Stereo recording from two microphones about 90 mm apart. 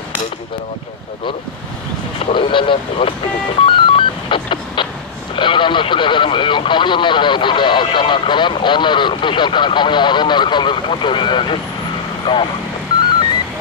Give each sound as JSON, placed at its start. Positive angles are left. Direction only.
{"t": 2.1, "sound": "speech", "side_deg": 65}
{"t": 3.6, "sound": "telephone dialing", "side_deg": 70}
{"t": 5.3, "sound": "speech", "side_deg": 65}